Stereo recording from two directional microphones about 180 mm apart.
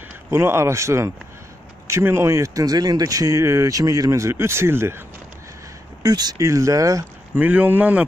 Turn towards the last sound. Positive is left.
turn(degrees=-10)  # may be behind; listen again after turning